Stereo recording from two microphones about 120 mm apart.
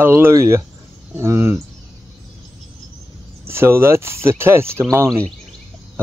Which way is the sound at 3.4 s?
20° right (ahead or behind).